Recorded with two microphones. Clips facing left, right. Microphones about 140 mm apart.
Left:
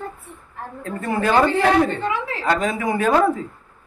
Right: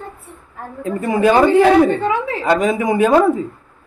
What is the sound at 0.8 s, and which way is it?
A woman's voice, 15° right (ahead or behind).